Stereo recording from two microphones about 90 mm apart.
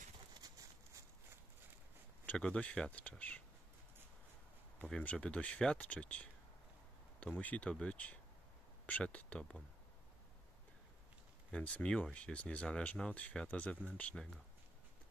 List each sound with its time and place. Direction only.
0.4 s a sound: 40° right (ahead or behind)
2.2 s speech: 10° left (ahead or behind)
5.0 s speech: 10° left (ahead or behind)
11.5 s speech: 15° left (ahead or behind)